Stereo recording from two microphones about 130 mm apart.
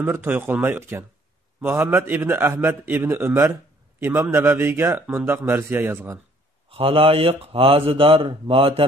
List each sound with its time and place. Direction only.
0.0 s a man's voice: 20° right (ahead or behind)
6.7 s speech: 50° right (ahead or behind)